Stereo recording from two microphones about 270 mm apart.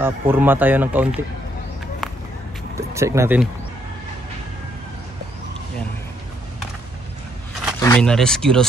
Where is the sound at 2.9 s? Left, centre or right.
Centre.